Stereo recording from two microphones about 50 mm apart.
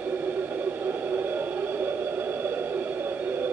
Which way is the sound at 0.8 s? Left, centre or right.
Right.